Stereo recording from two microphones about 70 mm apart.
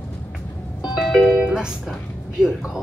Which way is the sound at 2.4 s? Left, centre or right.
Centre.